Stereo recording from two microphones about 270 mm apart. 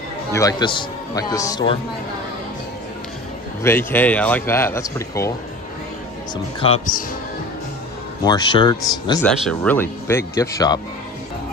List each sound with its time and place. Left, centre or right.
0.3 s speech: centre
3.6 s speech: centre
6.3 s speech: left
8.2 s speech: centre
9.2 s speech: centre